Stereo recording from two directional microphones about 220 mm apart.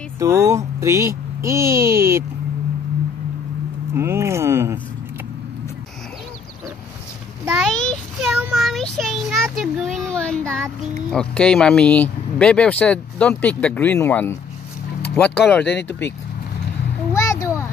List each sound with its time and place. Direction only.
0.2 s speech: 15° right (ahead or behind)
3.9 s speech: 10° right (ahead or behind)
7.4 s speech: centre (ahead or behind)
15.6 s speech: 50° left (ahead or behind)
17.1 s a sound: 15° left (ahead or behind)